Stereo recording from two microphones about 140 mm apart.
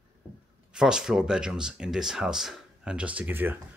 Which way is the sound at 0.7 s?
5° right (ahead or behind).